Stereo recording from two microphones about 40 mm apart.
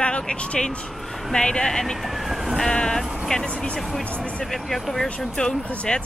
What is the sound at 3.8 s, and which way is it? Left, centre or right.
Speech, centre.